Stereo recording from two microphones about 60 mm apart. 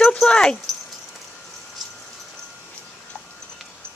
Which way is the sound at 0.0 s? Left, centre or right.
Centre.